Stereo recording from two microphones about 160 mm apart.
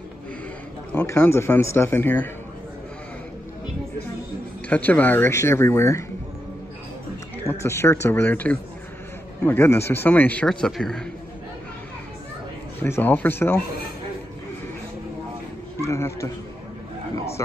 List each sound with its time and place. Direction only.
0.9 s a man's voice: 10° left (ahead or behind)
4.6 s a man's voice: 10° left (ahead or behind)
7.4 s a man's voice: 15° left (ahead or behind)
12.8 s a man's voice: 15° left (ahead or behind)
15.8 s a man's voice: 20° left (ahead or behind)